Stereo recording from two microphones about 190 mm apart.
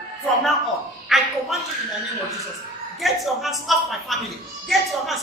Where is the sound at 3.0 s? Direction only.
Centre (ahead or behind).